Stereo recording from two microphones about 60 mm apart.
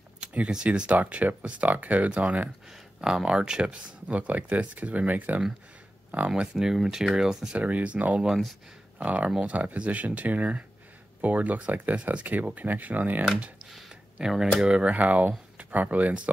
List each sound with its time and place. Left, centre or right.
0.2 s speech: centre
3.0 s speech: centre
6.5 s speech: centre
7.5 s speech: right